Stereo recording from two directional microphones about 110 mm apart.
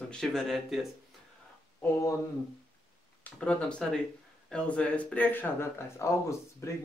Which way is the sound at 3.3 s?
5° left (ahead or behind).